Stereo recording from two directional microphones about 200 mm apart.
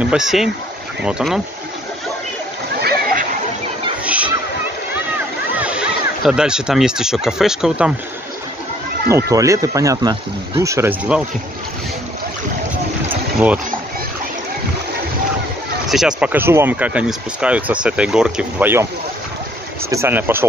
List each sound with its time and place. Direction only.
0.0 s speech: 5° right (ahead or behind)
2.8 s a sound: 50° right (ahead or behind)
4.0 s a sound: 5° right (ahead or behind)
5.6 s speech: 5° right (ahead or behind)
9.3 s speech: 15° right (ahead or behind)
13.1 s boat: 5° right (ahead or behind)
15.9 s speech: centre (ahead or behind)
19.9 s speech: 10° right (ahead or behind)